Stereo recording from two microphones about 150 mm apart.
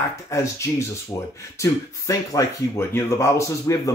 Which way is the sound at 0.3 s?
20° left (ahead or behind).